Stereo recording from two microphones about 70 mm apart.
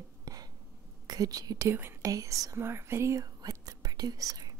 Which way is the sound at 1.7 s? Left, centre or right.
Right.